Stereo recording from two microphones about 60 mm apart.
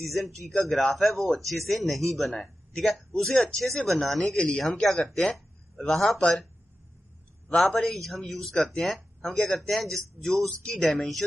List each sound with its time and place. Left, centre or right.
0.5 s speech: centre
4.4 s speech: centre
4.6 s speech: centre
7.4 s speech: centre